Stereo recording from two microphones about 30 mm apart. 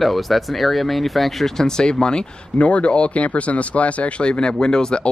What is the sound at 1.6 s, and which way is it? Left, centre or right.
Speech, left.